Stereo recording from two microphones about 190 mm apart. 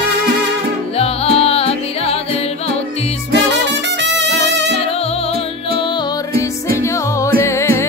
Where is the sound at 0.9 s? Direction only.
30° left (ahead or behind).